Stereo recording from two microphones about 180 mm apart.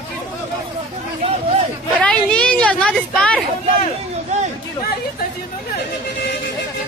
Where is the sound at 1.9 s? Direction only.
5° left (ahead or behind).